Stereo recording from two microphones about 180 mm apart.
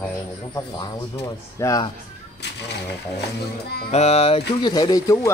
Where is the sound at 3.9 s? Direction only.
35° left (ahead or behind).